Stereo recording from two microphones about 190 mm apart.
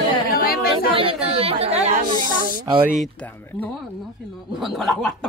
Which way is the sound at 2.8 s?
5° right (ahead or behind).